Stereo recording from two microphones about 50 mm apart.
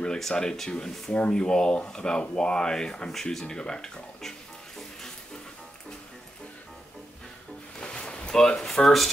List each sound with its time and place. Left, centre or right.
0.2 s speech: centre
3.1 s music: centre
7.8 s a sound: centre